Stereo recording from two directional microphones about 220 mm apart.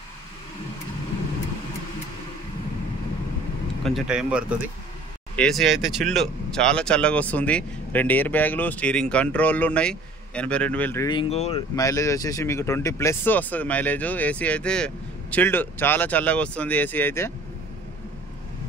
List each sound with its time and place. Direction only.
3.8 s speech: centre (ahead or behind)
11.1 s speech: 25° left (ahead or behind)
11.7 s speech: 15° left (ahead or behind)